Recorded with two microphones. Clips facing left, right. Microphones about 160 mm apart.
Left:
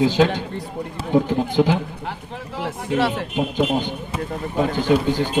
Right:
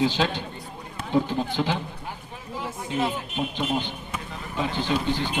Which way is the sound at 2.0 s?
75° left (ahead or behind).